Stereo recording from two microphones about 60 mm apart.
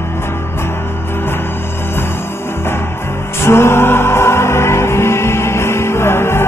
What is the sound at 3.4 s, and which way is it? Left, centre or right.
Music, left.